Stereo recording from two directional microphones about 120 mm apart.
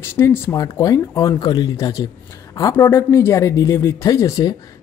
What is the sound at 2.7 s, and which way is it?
Speech, 20° left (ahead or behind).